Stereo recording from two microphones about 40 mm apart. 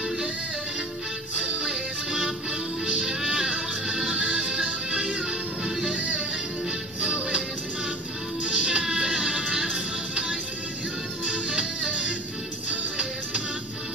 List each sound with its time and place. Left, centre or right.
1.3 s music: right
8.5 s music: right